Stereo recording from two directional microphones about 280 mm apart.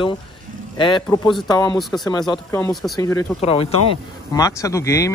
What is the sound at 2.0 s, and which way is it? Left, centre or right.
Speech, centre.